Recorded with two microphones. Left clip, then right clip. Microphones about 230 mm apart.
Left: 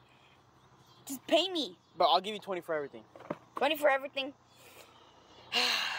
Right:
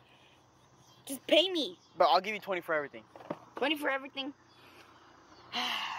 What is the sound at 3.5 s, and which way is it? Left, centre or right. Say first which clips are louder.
Speech: left 4 dB; left.